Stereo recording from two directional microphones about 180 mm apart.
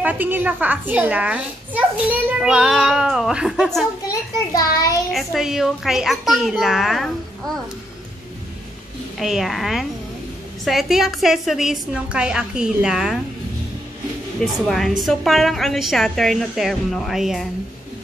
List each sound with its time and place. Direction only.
0.0 s a child's voice: 10° right (ahead or behind)
4.1 s a child's voice: 20° left (ahead or behind)
5.1 s a woman's voice: centre (ahead or behind)
9.2 s a woman's voice: centre (ahead or behind)
14.4 s a woman's voice: centre (ahead or behind)